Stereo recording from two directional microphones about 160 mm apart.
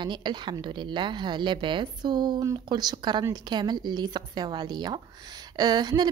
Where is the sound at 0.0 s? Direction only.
30° right (ahead or behind).